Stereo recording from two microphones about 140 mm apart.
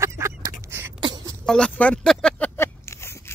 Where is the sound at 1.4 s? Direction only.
5° left (ahead or behind).